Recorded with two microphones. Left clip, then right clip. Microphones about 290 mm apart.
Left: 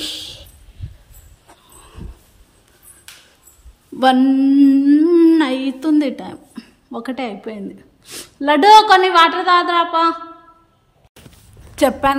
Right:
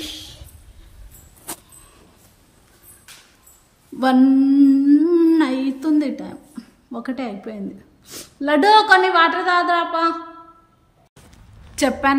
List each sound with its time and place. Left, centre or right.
0.0 s music: centre
4.0 s a sound: centre
8.1 s a woman's voice: centre
11.7 s a woman's voice: left